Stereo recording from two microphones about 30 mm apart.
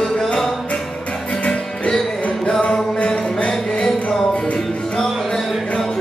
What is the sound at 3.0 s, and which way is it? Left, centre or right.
Music, left.